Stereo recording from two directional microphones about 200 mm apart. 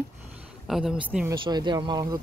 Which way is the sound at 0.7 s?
Centre (ahead or behind).